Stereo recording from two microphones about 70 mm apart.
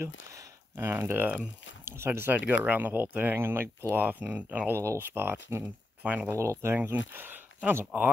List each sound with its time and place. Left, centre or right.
0.0 s speech: right
0.7 s speech: right
2.3 s speech: right
4.7 s speech: right
6.0 s speech: right
6.3 s speech: right
6.7 s speech: right